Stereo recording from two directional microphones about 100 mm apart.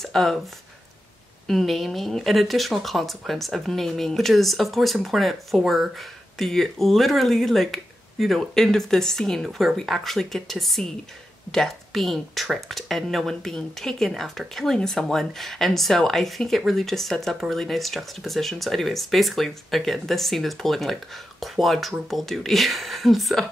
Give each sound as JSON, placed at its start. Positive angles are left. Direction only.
{"t": 0.0, "sound": "speech", "side_deg": 0}
{"t": 1.5, "sound": "speech", "side_deg": 0}